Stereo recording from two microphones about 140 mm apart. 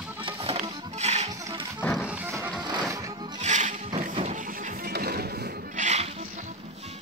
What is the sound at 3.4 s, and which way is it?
Music, 60° right (ahead or behind).